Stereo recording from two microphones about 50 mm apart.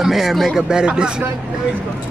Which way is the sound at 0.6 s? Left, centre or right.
Centre.